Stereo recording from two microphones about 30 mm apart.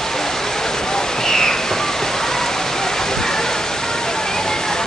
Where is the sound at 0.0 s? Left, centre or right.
Centre.